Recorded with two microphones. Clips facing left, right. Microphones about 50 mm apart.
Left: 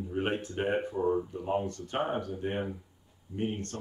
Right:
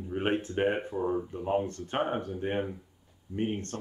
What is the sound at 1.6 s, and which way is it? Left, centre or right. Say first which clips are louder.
Speech: right 1 dB; right.